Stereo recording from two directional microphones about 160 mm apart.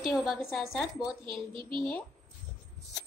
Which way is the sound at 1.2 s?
30° right (ahead or behind).